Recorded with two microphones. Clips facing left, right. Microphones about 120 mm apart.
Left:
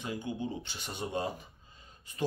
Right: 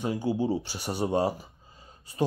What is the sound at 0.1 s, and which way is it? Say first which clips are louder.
Speech: right 8 dB; 35° right (ahead or behind).